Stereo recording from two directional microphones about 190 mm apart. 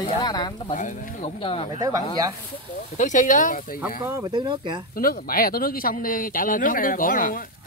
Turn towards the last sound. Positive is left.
turn(degrees=50)  # may be behind; listen again after turning